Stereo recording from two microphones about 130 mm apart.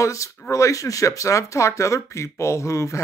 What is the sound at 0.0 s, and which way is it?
Speech, 25° left (ahead or behind).